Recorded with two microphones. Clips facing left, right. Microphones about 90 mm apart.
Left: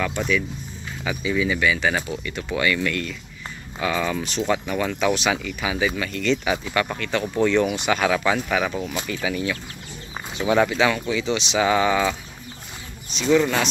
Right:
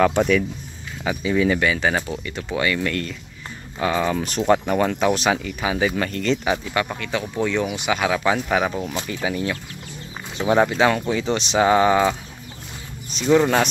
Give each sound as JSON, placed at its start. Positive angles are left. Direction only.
{"t": 0.0, "sound": "speech", "side_deg": -60}
{"t": 1.0, "sound": "speech", "side_deg": -35}
{"t": 4.2, "sound": "speech", "side_deg": -45}
{"t": 6.9, "sound": "speech", "side_deg": -10}
{"t": 8.5, "sound": "speech", "side_deg": -25}